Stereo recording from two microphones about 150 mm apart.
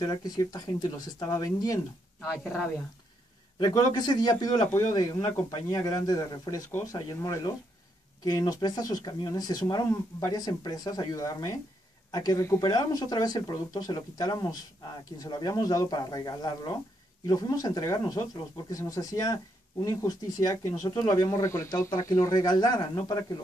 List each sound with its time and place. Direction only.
0.0 s speech: 25° left (ahead or behind)
3.5 s speech: 25° left (ahead or behind)